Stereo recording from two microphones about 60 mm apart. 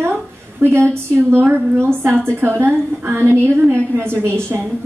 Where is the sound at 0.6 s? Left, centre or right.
Right.